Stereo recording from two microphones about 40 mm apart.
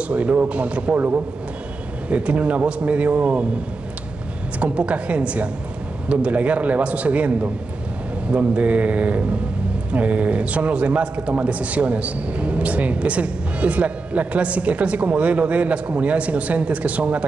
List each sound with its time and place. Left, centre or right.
0.1 s a man's voice: right
0.9 s a man's voice: right
2.0 s a man's voice: right
4.6 s a man's voice: right